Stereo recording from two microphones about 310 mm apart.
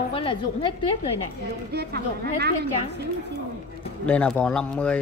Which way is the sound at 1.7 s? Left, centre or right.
Right.